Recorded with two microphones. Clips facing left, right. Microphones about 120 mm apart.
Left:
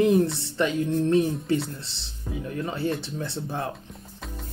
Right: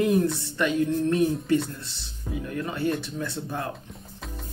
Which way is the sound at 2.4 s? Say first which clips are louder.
Even; 25° left (ahead or behind).